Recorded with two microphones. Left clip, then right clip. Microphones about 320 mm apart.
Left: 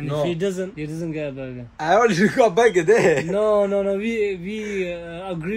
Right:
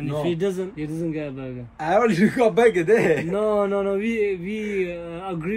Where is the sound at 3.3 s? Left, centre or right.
Centre.